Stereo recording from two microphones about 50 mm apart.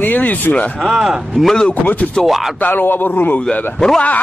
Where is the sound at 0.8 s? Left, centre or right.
Centre.